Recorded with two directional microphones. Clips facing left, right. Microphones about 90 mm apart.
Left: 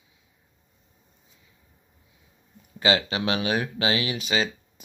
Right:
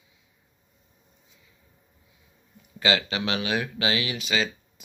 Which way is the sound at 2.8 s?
30° left (ahead or behind).